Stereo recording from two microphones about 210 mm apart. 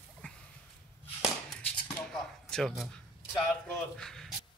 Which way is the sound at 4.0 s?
Centre (ahead or behind).